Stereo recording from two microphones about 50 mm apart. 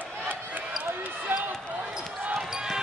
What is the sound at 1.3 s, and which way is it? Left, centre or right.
Basketball bounce, right.